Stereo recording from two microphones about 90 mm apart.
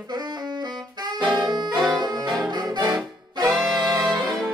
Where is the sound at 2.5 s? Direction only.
55° right (ahead or behind).